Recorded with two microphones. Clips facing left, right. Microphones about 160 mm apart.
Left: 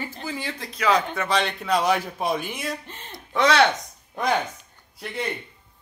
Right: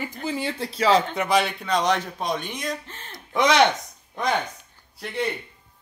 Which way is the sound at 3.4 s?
15° right (ahead or behind).